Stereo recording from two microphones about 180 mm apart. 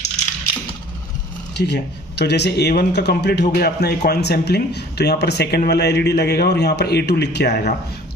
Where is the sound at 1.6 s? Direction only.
70° left (ahead or behind).